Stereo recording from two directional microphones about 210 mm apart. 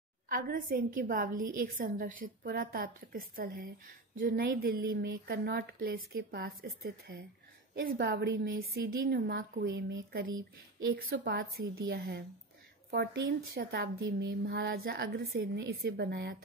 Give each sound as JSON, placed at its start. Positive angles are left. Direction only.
{"t": 0.3, "sound": "a woman's voice", "side_deg": -45}